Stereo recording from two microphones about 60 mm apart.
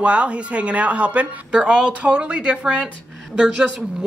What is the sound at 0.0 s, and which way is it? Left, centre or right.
Speech, centre.